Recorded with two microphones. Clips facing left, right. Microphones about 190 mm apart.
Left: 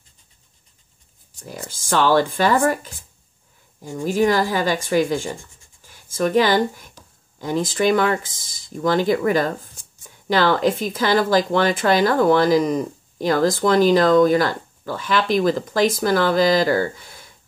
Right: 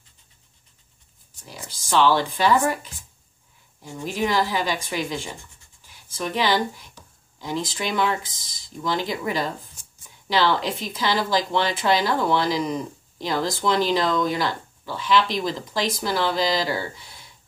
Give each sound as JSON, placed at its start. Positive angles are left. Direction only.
{"t": 1.4, "sound": "speech", "side_deg": 50}